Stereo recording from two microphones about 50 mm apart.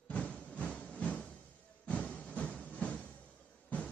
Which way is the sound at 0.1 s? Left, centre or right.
Left.